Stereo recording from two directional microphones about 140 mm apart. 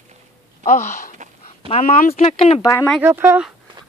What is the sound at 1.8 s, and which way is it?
Speech, 75° left (ahead or behind).